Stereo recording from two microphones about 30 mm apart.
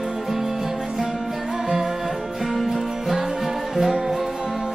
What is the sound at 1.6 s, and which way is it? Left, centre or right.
Music, centre.